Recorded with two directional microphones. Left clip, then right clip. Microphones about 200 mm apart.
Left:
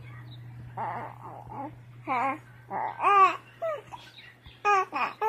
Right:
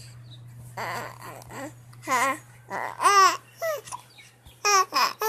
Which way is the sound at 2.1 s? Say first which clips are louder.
Right 4 dB; 25° right (ahead or behind).